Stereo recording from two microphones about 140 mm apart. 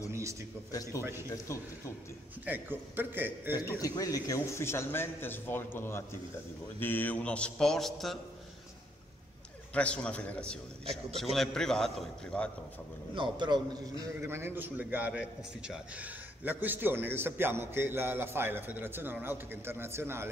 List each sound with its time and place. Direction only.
0.1 s a sound: 20° right (ahead or behind)
0.7 s speech: 25° left (ahead or behind)
2.4 s a man's voice: 15° right (ahead or behind)
3.8 s a man's voice: 25° left (ahead or behind); by 8.2 s centre (ahead or behind)
9.8 s a man's voice: 10° left (ahead or behind)
13.1 s a man's voice: 35° right (ahead or behind)
14.2 s a man's voice: 15° right (ahead or behind)